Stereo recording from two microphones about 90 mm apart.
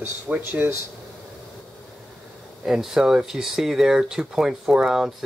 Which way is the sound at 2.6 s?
5° right (ahead or behind).